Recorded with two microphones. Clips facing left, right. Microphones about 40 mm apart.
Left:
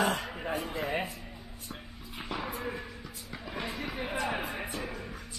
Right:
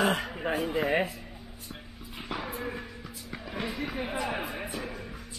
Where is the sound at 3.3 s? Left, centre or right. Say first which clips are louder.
Right 2 dB; centre.